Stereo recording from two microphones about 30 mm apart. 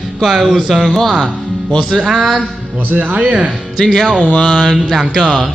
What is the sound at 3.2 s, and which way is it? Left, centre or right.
Speech, right.